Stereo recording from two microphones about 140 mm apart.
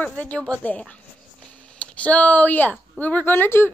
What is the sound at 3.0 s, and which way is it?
Speech, 10° left (ahead or behind).